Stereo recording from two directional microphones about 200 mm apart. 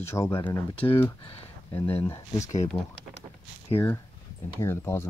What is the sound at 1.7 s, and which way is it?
Speech, 10° left (ahead or behind).